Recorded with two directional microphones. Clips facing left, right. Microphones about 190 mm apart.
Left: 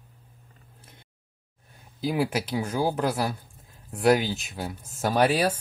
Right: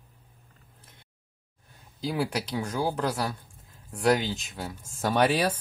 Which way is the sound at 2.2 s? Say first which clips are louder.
Left 3 dB; 5° left (ahead or behind).